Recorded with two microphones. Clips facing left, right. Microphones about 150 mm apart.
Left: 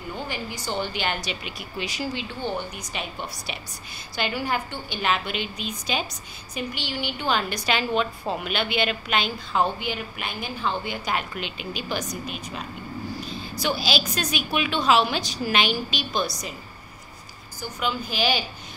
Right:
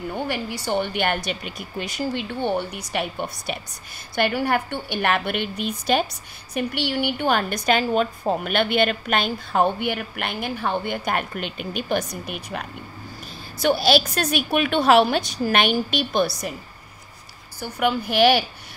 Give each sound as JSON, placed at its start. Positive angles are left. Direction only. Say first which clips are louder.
{"t": 0.1, "sound": "a woman's voice", "louder": "right 3 dB", "side_deg": -65}
{"t": 17.6, "sound": "a woman's voice", "louder": "right 6 dB", "side_deg": -60}